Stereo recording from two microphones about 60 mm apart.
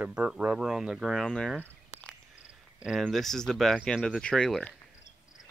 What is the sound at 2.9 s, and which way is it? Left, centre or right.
Speech, centre.